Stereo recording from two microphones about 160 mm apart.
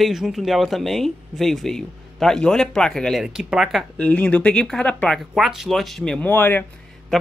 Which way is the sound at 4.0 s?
10° left (ahead or behind).